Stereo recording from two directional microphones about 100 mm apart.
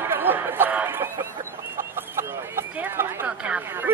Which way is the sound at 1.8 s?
25° right (ahead or behind).